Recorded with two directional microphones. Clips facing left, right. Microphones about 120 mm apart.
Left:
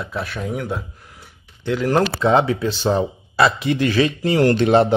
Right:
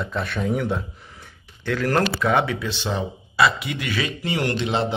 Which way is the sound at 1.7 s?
20° left (ahead or behind).